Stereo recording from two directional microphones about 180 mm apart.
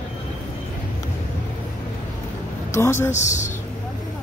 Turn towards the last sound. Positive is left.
turn(degrees=40)  # may be behind; listen again after turning